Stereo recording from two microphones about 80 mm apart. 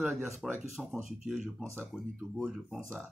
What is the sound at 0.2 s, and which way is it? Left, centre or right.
Speech, centre.